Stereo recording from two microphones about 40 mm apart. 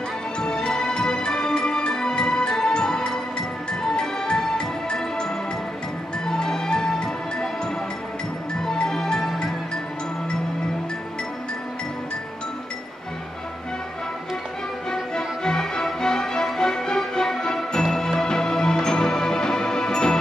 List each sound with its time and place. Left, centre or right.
0.6 s music: centre
14.9 s music: centre